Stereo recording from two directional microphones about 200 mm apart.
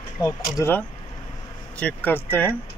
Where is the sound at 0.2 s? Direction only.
10° left (ahead or behind).